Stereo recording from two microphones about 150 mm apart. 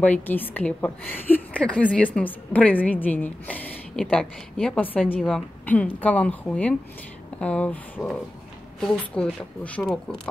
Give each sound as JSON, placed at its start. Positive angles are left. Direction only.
{"t": 0.0, "sound": "a woman's voice", "side_deg": 10}